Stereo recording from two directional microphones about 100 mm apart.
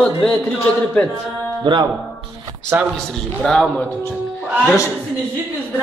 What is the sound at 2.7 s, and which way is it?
Speech, 25° right (ahead or behind).